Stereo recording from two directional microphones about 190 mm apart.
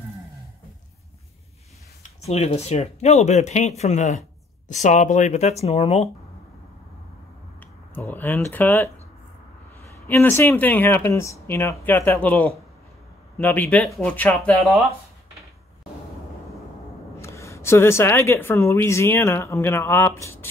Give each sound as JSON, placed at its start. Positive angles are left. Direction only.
{"t": 2.0, "sound": "speech", "side_deg": 35}
{"t": 7.9, "sound": "speech", "side_deg": 10}
{"t": 10.0, "sound": "speech", "side_deg": 10}
{"t": 17.2, "sound": "speech", "side_deg": 15}